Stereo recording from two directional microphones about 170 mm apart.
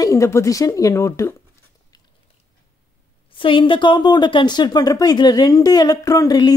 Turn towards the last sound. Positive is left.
turn(degrees=20)  # may be behind; listen again after turning